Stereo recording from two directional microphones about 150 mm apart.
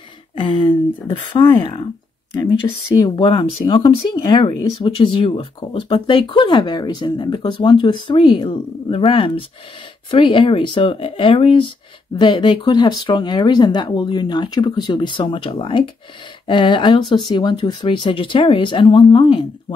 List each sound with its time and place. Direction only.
0.4 s speech: 35° left (ahead or behind)
2.6 s speech: 25° left (ahead or behind)